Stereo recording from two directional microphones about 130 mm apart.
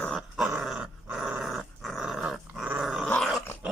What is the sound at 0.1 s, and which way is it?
Dog, 5° right (ahead or behind).